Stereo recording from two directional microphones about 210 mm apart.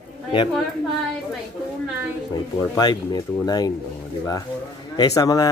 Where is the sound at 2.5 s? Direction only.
20° left (ahead or behind).